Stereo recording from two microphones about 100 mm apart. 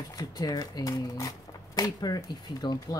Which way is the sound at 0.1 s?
40° left (ahead or behind).